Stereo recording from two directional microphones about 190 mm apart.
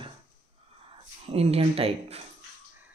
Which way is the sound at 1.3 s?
30° right (ahead or behind).